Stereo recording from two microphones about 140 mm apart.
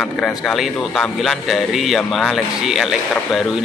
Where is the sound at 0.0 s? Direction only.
Centre (ahead or behind).